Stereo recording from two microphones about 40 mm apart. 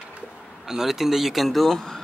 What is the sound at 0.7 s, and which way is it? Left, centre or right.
Speech, centre.